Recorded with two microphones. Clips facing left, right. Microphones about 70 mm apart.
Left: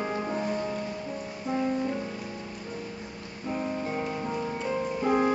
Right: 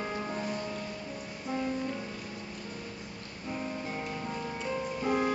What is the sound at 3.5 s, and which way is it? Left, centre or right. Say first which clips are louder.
Music: left 6 dB; centre.